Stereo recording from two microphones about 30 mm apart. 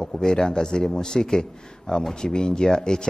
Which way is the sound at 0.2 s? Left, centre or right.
Left.